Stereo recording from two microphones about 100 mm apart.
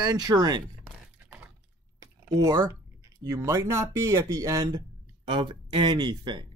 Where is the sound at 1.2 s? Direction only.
15° right (ahead or behind).